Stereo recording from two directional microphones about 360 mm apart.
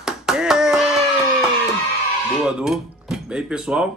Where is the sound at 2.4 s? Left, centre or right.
Centre.